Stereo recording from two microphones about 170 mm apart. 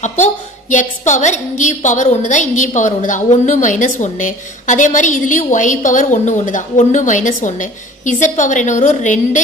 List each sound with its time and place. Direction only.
0.0 s a woman's voice: 45° left (ahead or behind)